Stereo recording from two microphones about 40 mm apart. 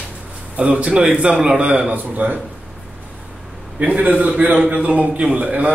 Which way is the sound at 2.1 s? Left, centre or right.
Right.